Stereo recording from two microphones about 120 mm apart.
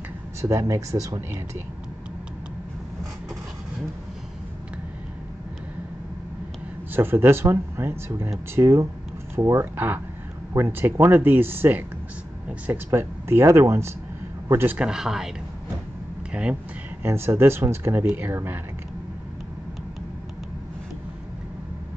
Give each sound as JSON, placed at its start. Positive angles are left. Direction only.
{"t": 0.4, "sound": "speech", "side_deg": -25}
{"t": 6.9, "sound": "speech", "side_deg": -20}
{"t": 14.8, "sound": "speech", "side_deg": -5}
{"t": 16.3, "sound": "speech", "side_deg": -10}
{"t": 17.0, "sound": "speech", "side_deg": -20}